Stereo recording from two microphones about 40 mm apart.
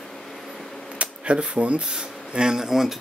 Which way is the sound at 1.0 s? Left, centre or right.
Right.